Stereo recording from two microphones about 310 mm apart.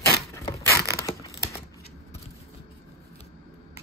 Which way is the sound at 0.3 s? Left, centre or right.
Centre.